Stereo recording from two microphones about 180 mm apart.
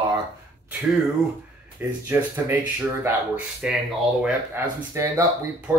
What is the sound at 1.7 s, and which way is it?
Speech, 10° right (ahead or behind).